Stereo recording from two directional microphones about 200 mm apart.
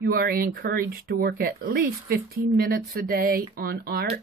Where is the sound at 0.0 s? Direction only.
50° right (ahead or behind).